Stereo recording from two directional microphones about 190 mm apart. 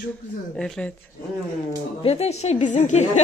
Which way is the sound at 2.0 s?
35° left (ahead or behind).